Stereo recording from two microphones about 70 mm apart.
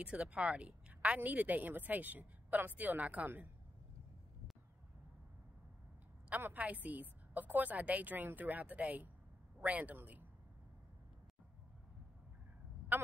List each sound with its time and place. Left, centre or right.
0.0 s a woman's voice: centre
6.3 s a woman's voice: right
12.9 s speech: right